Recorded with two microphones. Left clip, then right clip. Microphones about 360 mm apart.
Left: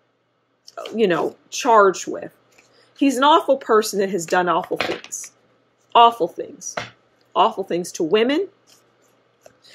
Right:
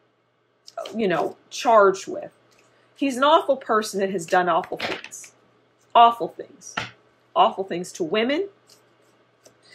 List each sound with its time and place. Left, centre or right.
0.9 s speech: left
7.3 s speech: left